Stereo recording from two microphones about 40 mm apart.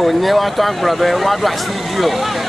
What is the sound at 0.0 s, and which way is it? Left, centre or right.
Speech, centre.